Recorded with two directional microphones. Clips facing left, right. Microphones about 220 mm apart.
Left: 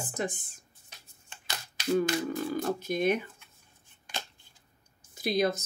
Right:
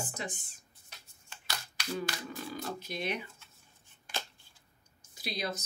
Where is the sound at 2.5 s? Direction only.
50° left (ahead or behind).